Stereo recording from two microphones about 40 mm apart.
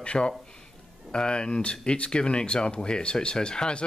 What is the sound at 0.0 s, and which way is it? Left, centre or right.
Speech, left.